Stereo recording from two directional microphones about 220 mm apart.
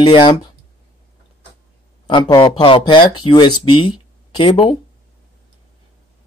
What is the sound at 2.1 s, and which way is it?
Speech, 20° left (ahead or behind).